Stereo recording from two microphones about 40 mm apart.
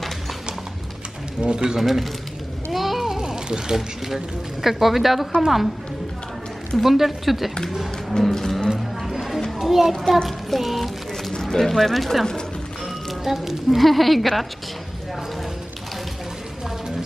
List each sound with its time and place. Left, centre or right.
1.4 s speech: right
1.8 s speech: centre
2.7 s a sound: centre
3.0 s speech: centre
6.8 s speech: centre
8.1 s music: centre
8.6 s a sound: centre
9.9 s music: centre
10.2 s speech: centre
11.3 s speech: centre